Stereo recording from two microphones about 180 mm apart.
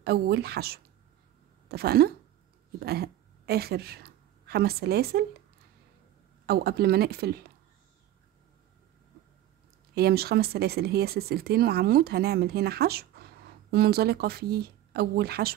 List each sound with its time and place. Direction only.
0.0 s a woman's voice: 65° right (ahead or behind)
6.4 s speech: 60° right (ahead or behind)
9.9 s speech: 60° right (ahead or behind)